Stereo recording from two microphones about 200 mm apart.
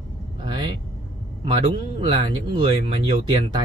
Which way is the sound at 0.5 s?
25° right (ahead or behind).